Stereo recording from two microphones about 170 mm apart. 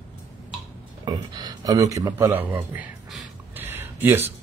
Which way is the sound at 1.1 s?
25° right (ahead or behind).